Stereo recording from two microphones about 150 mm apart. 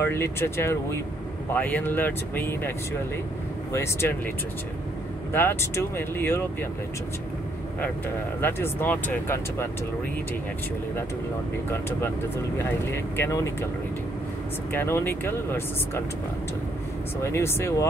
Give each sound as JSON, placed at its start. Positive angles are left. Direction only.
{"t": 0.0, "sound": "speech", "side_deg": 15}
{"t": 3.7, "sound": "speech", "side_deg": 15}
{"t": 5.3, "sound": "speech", "side_deg": 15}
{"t": 8.4, "sound": "speech", "side_deg": 15}
{"t": 12.9, "sound": "speech", "side_deg": 15}
{"t": 14.7, "sound": "speech", "side_deg": 15}
{"t": 17.2, "sound": "speech", "side_deg": 15}